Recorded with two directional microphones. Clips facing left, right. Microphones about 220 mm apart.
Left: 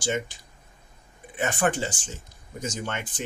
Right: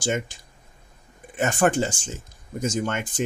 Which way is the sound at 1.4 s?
45° right (ahead or behind).